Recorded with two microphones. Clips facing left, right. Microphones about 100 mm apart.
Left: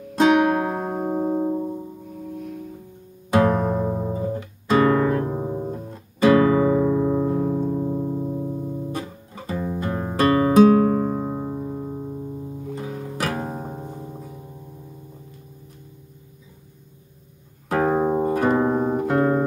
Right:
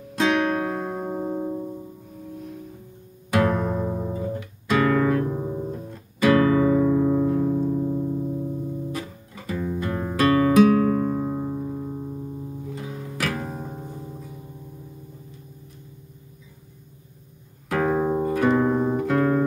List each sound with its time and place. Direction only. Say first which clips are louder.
0.2 s music: left 5 dB; 20° left (ahead or behind)
3.3 s music: left 3 dB; 30° left (ahead or behind)
17.6 s music: left 2 dB; 30° left (ahead or behind)